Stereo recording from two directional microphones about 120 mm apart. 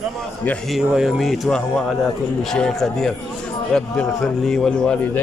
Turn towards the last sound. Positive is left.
turn(degrees=5)  # may be behind; listen again after turning